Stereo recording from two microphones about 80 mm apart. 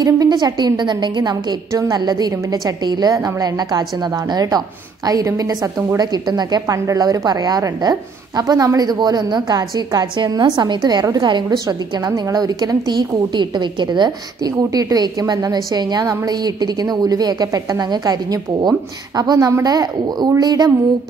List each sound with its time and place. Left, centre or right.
0.0 s a woman's voice: right
10.8 s a woman's voice: right
11.5 s a woman's voice: right
14.7 s a woman's voice: right